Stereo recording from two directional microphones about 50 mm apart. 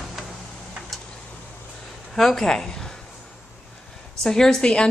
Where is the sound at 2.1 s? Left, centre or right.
Centre.